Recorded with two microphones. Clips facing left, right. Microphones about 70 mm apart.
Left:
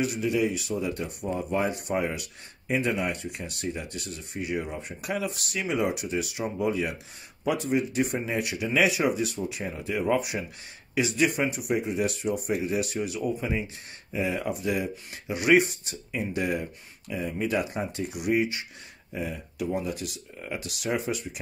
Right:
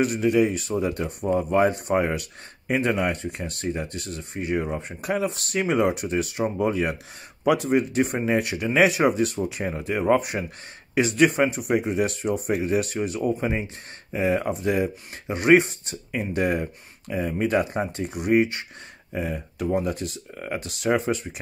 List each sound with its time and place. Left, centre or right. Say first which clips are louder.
0.0 s speech: right 5 dB; right
7.4 s speech: right 6 dB; right
7.7 s speech: right 4 dB; right